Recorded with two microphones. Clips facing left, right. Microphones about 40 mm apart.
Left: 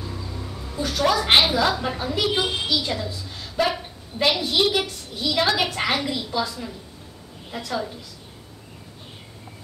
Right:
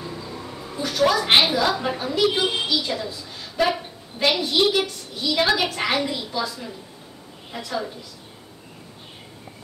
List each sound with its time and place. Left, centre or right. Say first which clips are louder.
0.0 s a woman's voice: right 1 dB; centre